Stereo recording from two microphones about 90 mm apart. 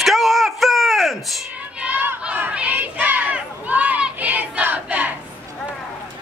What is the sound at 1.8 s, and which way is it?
Crowd, 20° right (ahead or behind).